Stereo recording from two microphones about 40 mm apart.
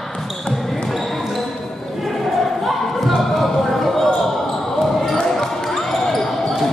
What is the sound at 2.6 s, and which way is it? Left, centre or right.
Basketball bounce, centre.